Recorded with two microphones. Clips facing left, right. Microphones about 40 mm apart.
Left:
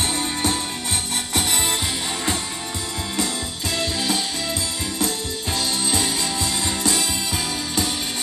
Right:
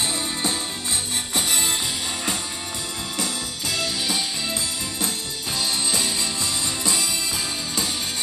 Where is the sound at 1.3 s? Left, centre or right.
Left.